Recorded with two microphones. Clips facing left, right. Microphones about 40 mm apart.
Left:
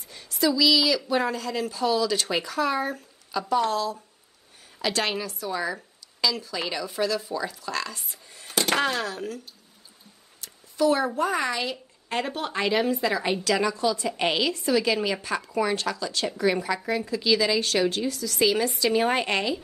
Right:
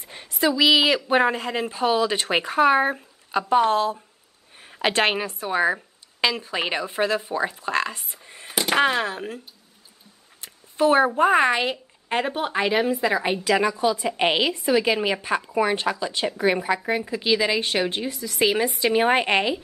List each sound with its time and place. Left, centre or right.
0.0 s a woman's voice: right
8.5 s a sound: centre
8.8 s a woman's voice: right
10.4 s a sound: right
11.1 s a woman's voice: right
11.7 s a woman's voice: right